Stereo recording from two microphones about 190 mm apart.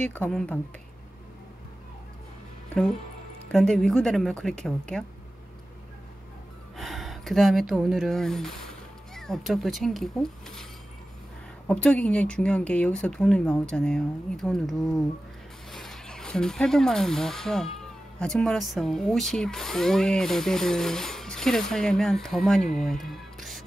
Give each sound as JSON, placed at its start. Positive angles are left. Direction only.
{"t": 0.0, "sound": "speech", "side_deg": 5}
{"t": 3.5, "sound": "speech", "side_deg": 5}
{"t": 6.8, "sound": "speech", "side_deg": 0}
{"t": 22.6, "sound": "speech", "side_deg": 40}
{"t": 22.8, "sound": "music", "side_deg": 0}